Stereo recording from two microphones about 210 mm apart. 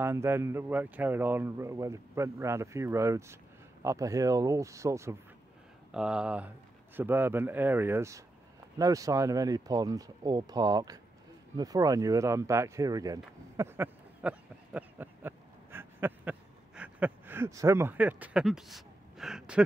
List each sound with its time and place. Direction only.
0.0 s speech: 10° right (ahead or behind)
5.9 s speech: 5° right (ahead or behind)